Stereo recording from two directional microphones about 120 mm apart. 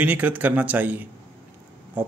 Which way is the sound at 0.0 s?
15° right (ahead or behind).